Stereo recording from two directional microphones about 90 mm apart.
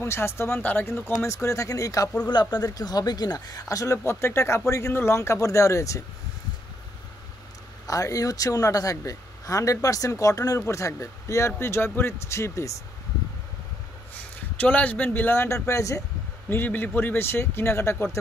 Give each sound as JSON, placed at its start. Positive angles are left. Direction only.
{"t": 0.0, "sound": "speech", "side_deg": 30}
{"t": 2.3, "sound": "speech", "side_deg": 50}
{"t": 7.8, "sound": "speech", "side_deg": 40}
{"t": 14.6, "sound": "speech", "side_deg": 15}
{"t": 16.4, "sound": "speech", "side_deg": 20}